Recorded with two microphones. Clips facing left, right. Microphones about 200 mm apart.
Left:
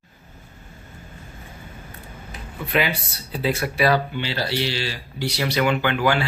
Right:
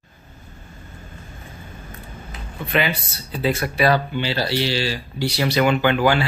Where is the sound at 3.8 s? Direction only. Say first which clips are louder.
Right 2 dB; 30° right (ahead or behind).